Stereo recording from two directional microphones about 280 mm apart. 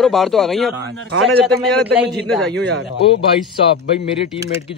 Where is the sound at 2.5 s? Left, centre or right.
Right.